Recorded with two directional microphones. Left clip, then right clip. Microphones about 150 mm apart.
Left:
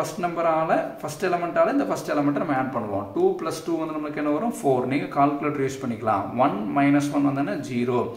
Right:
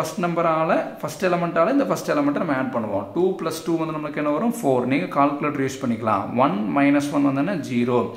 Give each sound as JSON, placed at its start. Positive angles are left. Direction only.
{"t": 0.2, "sound": "speech", "side_deg": -45}
{"t": 4.2, "sound": "speech", "side_deg": -45}